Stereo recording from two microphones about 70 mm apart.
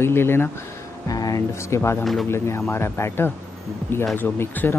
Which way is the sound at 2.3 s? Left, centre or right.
Left.